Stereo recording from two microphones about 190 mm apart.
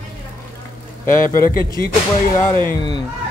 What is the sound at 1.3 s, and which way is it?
Speech, 45° left (ahead or behind).